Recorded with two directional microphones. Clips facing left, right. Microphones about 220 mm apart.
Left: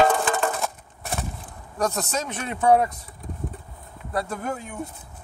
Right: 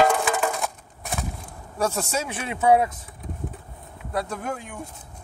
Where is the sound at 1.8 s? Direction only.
10° right (ahead or behind).